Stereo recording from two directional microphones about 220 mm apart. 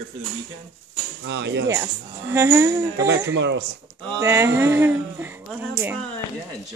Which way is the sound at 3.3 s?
55° right (ahead or behind).